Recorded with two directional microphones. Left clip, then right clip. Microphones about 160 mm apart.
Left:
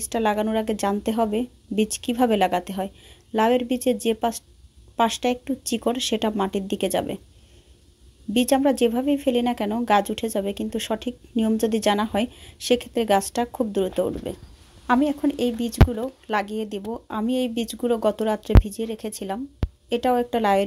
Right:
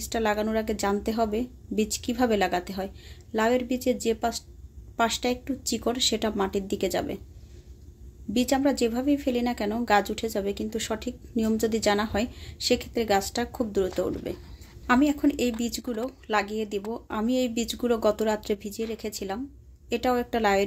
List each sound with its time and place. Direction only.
0.0 s speech: 35° left (ahead or behind)
8.3 s speech: 40° left (ahead or behind)